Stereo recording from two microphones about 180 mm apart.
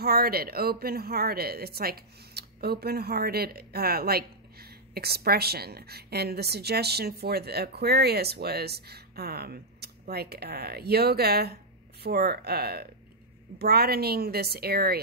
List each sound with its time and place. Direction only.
0.0 s speech: 60° right (ahead or behind)